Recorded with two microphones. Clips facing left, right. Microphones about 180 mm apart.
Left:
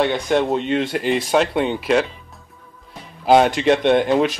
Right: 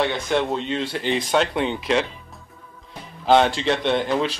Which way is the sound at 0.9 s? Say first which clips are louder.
Left 1 dB; 5° left (ahead or behind).